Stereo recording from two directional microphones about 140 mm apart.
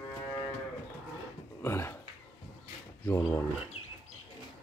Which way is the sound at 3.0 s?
20° left (ahead or behind).